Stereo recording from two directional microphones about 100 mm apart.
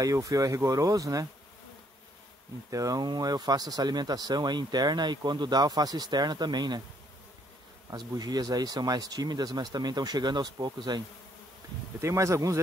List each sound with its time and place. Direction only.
0.0 s speech: 35° right (ahead or behind)
2.7 s speech: 40° right (ahead or behind)
7.9 s speech: 40° right (ahead or behind)
12.0 s speech: 30° right (ahead or behind)